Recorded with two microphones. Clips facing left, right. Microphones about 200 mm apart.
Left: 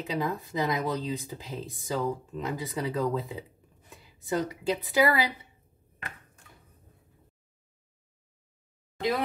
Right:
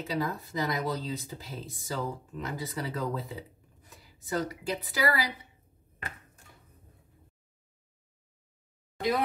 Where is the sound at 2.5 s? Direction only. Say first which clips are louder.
Left 4 dB; 20° left (ahead or behind).